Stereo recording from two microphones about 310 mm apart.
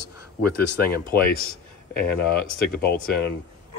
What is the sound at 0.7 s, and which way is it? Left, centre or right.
Speech, left.